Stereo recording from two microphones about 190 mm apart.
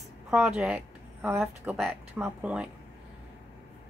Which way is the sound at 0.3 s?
5° right (ahead or behind).